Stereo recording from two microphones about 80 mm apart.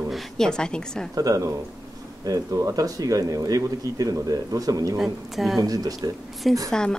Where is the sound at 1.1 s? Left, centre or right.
Right.